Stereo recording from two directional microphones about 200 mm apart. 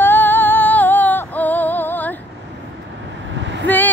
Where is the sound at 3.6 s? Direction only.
10° left (ahead or behind).